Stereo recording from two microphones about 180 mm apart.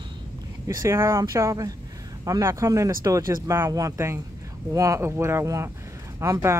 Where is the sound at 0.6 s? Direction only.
15° right (ahead or behind).